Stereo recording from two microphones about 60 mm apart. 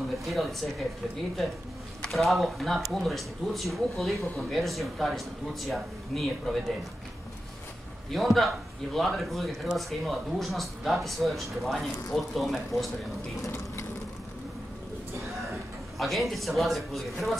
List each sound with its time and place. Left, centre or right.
0.2 s speech: centre
2.0 s speech: centre
8.1 s speech: centre
13.4 s a sound: left
16.0 s speech: centre